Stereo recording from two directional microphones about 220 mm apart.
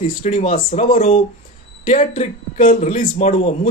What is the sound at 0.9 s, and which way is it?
A man's voice, 25° left (ahead or behind).